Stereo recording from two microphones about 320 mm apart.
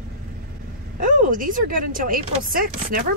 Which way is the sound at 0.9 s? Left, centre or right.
Right.